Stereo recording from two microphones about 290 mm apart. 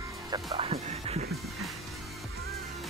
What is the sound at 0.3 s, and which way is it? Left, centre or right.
Speech, centre.